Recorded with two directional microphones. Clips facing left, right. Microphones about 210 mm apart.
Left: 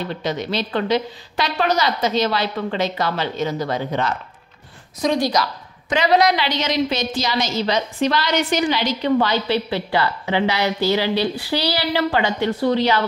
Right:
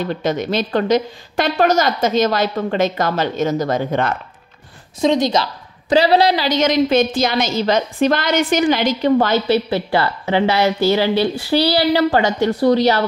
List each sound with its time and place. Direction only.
0.2 s a woman's voice: 50° right (ahead or behind)
5.0 s a woman's voice: 25° right (ahead or behind); by 13.0 s 40° right (ahead or behind)